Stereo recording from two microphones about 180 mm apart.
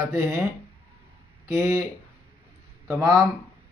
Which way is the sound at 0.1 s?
10° right (ahead or behind).